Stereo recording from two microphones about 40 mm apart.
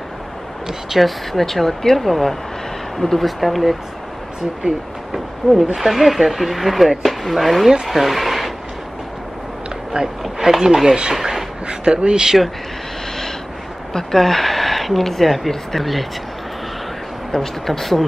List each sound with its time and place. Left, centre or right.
0.9 s speech: centre
5.8 s speech: centre
10.2 s speech: centre
11.1 s a sound: centre
11.6 s speech: right
13.9 s speech: centre
17.3 s speech: centre